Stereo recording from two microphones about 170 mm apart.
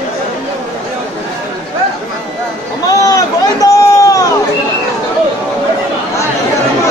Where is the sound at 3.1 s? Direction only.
20° left (ahead or behind).